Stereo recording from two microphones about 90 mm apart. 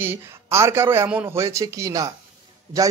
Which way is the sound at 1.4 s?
35° right (ahead or behind).